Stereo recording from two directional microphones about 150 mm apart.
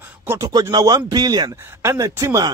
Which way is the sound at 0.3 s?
25° right (ahead or behind).